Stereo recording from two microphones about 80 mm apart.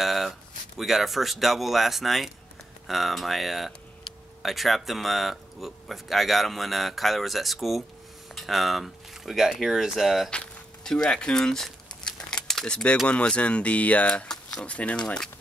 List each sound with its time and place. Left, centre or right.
0.0 s speech: centre
10.3 s speech: centre